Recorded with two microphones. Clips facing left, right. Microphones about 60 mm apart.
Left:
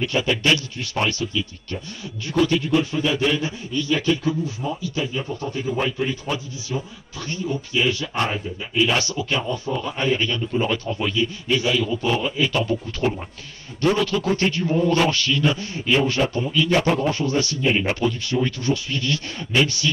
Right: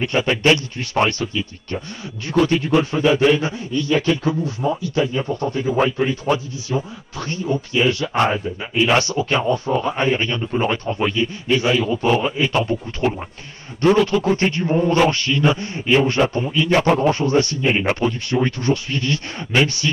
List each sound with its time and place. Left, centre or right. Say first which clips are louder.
0.0 s a man's voice: right 3 dB; right